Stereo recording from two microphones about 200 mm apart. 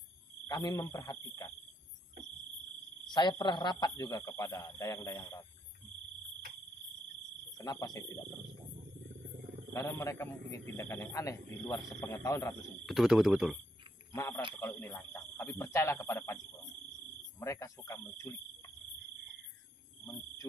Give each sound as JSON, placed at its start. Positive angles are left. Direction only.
{"t": 0.5, "sound": "speech", "side_deg": 20}
{"t": 3.1, "sound": "speech", "side_deg": 20}
{"t": 7.5, "sound": "speech", "side_deg": 20}
{"t": 9.7, "sound": "speech", "side_deg": 15}
{"t": 12.8, "sound": "speech", "side_deg": 0}
{"t": 14.1, "sound": "speech", "side_deg": 15}
{"t": 17.4, "sound": "speech", "side_deg": 15}